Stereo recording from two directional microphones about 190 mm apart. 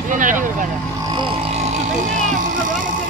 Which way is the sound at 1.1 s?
30° right (ahead or behind).